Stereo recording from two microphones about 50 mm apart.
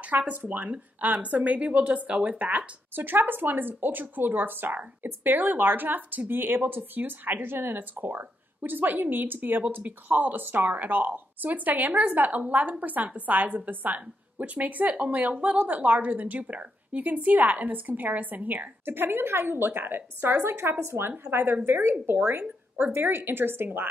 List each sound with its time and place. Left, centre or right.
0.3 s a woman's voice: right
22.4 s speech: right
22.9 s a woman's voice: right